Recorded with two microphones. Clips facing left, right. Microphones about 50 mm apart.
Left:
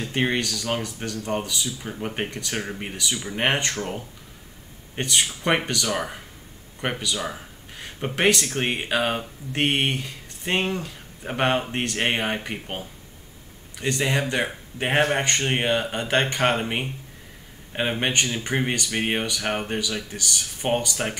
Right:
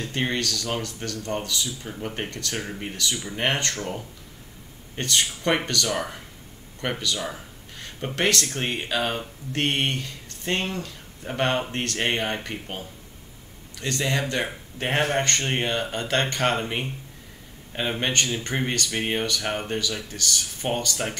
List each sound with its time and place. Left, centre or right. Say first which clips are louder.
0.0 s speech: left 2 dB; centre